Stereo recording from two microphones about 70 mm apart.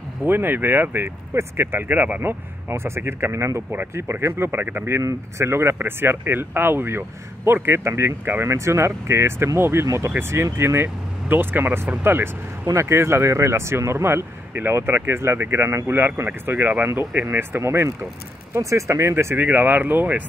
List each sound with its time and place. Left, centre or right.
0.2 s speech: right
2.7 s speech: right
19.3 s speech: right